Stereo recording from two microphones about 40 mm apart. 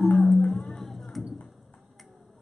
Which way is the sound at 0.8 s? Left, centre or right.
Centre.